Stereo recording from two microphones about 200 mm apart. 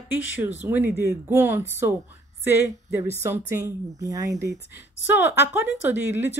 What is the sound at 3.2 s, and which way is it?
A woman's voice, 15° right (ahead or behind).